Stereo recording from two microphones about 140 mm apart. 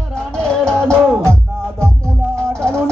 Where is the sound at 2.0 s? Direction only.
5° left (ahead or behind).